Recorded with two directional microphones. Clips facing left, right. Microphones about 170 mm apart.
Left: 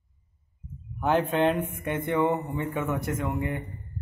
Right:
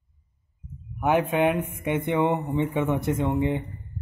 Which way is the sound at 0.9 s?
15° right (ahead or behind).